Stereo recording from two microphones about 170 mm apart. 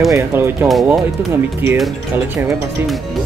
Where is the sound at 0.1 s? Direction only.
15° right (ahead or behind).